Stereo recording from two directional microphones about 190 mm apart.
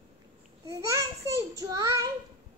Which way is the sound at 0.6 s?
15° right (ahead or behind).